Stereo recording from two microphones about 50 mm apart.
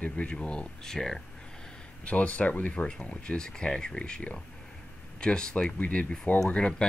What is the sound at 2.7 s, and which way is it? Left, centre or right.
Speech, centre.